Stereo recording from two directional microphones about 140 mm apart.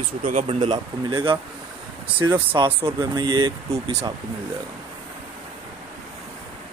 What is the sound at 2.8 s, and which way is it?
Speech, 30° right (ahead or behind).